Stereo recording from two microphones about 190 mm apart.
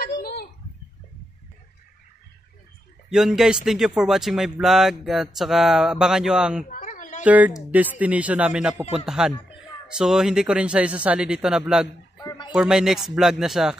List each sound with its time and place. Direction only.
0.0 s a sound: 55° left (ahead or behind)
3.1 s speech: 5° right (ahead or behind)
6.7 s a sound: 45° left (ahead or behind)
7.2 s a man's voice: 10° right (ahead or behind)
12.2 s chicken: 20° left (ahead or behind)
12.5 s speech: 5° right (ahead or behind)